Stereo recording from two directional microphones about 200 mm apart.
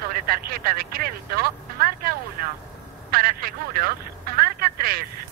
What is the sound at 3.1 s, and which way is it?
Telephone, 50° right (ahead or behind).